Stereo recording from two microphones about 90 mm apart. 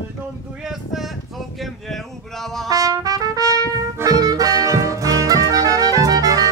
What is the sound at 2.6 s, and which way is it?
Trumpet, 40° right (ahead or behind).